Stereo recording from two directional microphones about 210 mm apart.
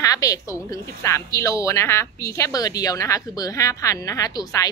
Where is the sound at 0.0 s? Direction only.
15° left (ahead or behind).